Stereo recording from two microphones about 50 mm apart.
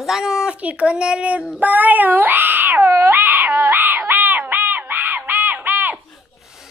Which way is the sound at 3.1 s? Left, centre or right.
Right.